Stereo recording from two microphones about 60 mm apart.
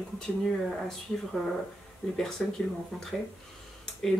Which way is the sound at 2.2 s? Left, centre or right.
Centre.